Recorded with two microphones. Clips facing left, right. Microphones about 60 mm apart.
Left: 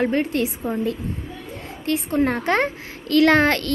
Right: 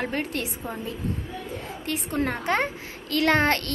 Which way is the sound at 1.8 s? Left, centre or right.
Left.